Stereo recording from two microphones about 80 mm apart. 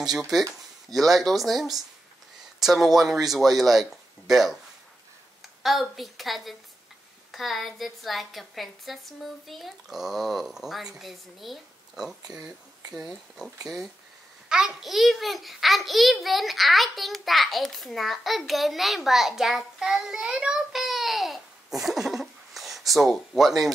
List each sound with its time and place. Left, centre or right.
0.8 s a child's voice: centre